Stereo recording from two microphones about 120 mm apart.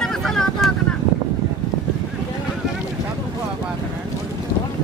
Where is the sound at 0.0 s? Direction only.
5° left (ahead or behind).